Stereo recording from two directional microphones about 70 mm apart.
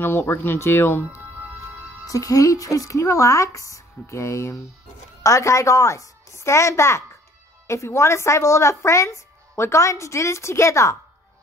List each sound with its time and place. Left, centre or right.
0.0 s speech: left
2.0 s a woman's voice: left